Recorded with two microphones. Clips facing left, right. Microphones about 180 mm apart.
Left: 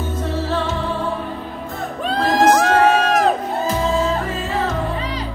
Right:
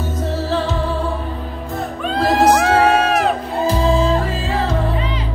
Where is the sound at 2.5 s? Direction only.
10° right (ahead or behind).